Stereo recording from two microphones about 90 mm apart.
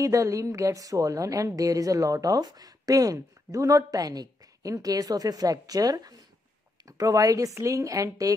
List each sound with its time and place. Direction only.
0.0 s a woman's voice: 40° right (ahead or behind)